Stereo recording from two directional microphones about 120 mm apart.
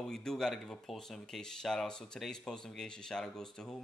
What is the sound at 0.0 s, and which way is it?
Speech, 5° left (ahead or behind).